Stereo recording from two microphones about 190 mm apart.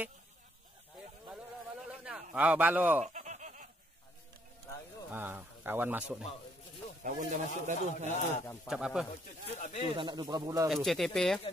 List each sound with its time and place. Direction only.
1.9 s a sound: 5° right (ahead or behind)
2.3 s speech: 10° right (ahead or behind)
3.0 s laughter: 40° right (ahead or behind)
5.1 s speech: 10° right (ahead or behind)
7.0 s speech: 40° right (ahead or behind)
8.6 s speech: 5° right (ahead or behind)
9.6 s speech: 40° left (ahead or behind)
9.9 s speech: 25° right (ahead or behind)
10.7 s speech: centre (ahead or behind)